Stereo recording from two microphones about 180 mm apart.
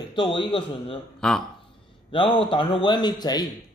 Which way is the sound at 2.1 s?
25° left (ahead or behind).